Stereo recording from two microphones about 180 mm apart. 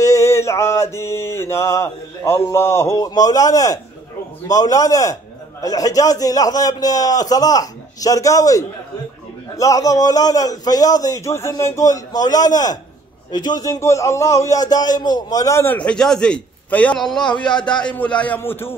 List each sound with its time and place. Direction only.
0.0 s mantra: 15° left (ahead or behind)
4.5 s a man's voice: 20° left (ahead or behind)